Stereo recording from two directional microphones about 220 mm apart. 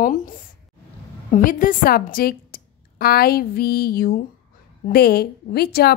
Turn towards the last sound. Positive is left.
turn(degrees=45)  # may be behind; listen again after turning